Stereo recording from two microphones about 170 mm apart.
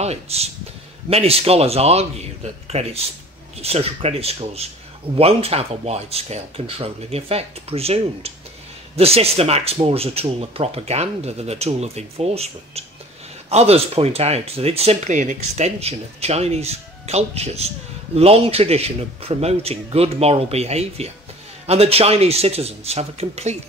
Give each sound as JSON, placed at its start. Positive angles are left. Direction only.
{"t": 0.0, "sound": "speech", "side_deg": -40}